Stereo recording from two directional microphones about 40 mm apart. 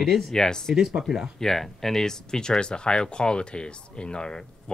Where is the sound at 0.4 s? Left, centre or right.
Centre.